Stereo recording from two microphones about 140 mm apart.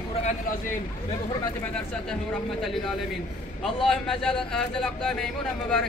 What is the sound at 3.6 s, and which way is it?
A man's voice, centre (ahead or behind).